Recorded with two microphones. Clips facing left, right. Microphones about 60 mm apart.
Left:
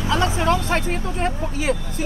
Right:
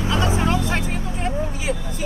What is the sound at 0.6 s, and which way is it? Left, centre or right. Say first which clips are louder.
Speech: left 2 dB; left.